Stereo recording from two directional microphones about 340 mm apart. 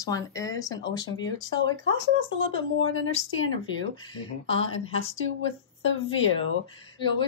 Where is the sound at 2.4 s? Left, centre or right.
Left.